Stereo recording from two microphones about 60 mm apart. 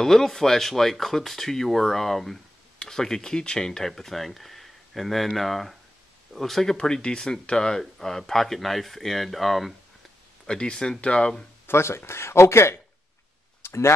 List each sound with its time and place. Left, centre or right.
0.0 s speech: centre
10.4 s speech: centre
11.6 s speech: left
13.6 s a sound: left